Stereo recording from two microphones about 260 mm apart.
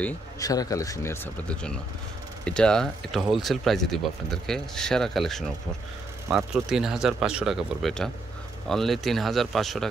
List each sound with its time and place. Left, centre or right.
0.0 s speech: centre